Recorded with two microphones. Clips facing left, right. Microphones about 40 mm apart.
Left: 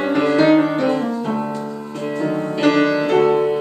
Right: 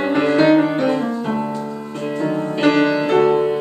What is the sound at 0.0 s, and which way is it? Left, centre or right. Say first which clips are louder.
Music: even; centre.